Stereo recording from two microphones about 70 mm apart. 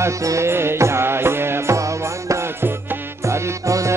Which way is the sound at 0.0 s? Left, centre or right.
Right.